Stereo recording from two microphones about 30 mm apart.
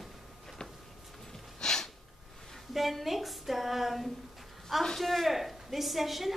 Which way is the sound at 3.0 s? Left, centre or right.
Centre.